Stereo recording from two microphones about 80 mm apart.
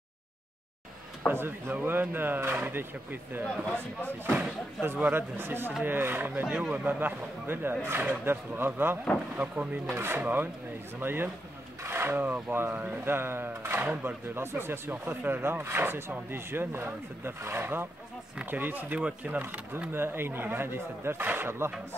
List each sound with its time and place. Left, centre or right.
1.3 s speech: right
4.8 s speech: right
6.4 s speech: centre
6.7 s speech: right
11.8 s filing: right
12.4 s speech: right